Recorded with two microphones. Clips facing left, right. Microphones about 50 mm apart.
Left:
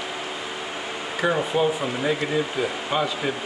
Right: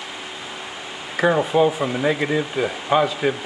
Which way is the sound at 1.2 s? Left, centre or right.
Centre.